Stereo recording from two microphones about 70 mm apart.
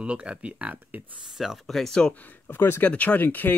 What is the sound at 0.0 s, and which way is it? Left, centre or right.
Speech, centre.